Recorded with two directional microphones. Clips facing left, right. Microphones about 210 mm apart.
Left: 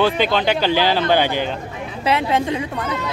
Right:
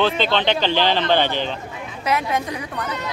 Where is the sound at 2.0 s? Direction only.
25° left (ahead or behind).